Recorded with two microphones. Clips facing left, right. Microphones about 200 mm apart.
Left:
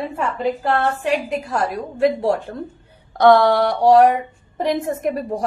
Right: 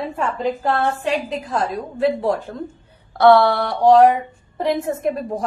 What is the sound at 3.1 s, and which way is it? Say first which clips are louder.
A woman's voice: even; 15° left (ahead or behind).